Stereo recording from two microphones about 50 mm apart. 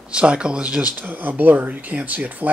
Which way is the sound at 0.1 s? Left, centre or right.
Centre.